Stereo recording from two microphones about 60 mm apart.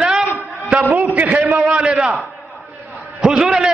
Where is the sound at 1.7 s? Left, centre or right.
Centre.